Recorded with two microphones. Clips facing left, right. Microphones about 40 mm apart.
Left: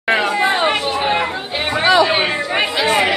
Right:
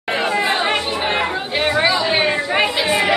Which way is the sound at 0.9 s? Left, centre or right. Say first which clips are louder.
Left 2 dB; centre.